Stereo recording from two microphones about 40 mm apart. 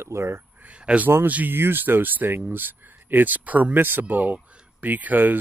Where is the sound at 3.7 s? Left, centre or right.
Right.